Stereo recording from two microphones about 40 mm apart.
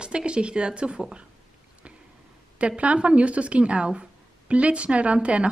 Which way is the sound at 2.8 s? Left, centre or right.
Right.